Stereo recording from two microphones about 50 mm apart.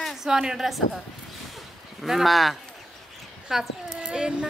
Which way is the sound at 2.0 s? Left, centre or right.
Centre.